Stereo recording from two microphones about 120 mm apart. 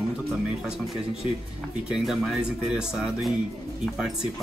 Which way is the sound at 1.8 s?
5° right (ahead or behind).